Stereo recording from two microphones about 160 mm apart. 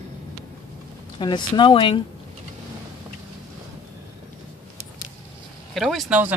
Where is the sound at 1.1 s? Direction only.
30° left (ahead or behind).